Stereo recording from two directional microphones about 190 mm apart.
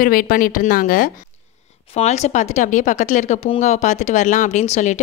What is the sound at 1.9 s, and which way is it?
A woman's voice, 35° left (ahead or behind).